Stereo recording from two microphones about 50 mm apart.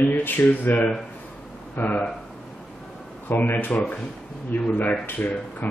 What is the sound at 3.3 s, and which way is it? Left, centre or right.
Speech, left.